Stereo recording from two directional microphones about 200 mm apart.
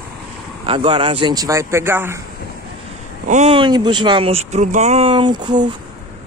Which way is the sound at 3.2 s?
40° right (ahead or behind).